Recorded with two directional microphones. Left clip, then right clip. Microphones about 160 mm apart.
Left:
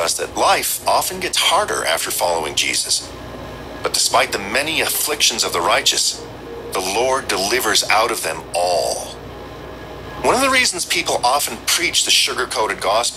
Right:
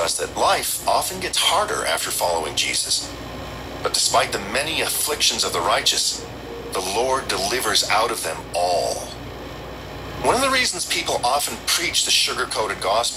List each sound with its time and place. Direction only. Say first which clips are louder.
0.0 s speech: left 3 dB; 35° left (ahead or behind)
10.2 s speech: left 4 dB; 35° left (ahead or behind)